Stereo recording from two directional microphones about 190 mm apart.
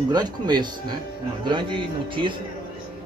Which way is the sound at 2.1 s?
25° right (ahead or behind).